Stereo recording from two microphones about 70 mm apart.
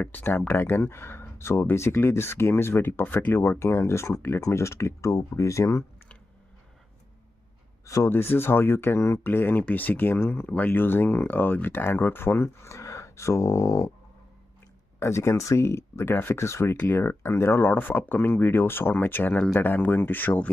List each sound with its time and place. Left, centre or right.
0.0 s speech: left
3.3 s speech: left
7.8 s speech: left
8.1 s speech: left
15.0 s speech: left
16.7 s speech: left
17.0 s speech: left
19.3 s speech: centre
19.6 s speech: left